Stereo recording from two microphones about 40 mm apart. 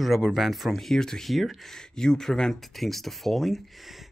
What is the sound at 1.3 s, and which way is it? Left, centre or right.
Speech, centre.